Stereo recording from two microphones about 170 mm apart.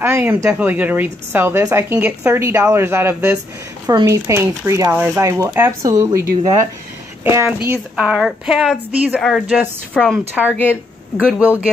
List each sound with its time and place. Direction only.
0.0 s a woman's voice: 10° right (ahead or behind)
10.5 s speech: 10° left (ahead or behind)
11.3 s a woman's voice: 10° right (ahead or behind)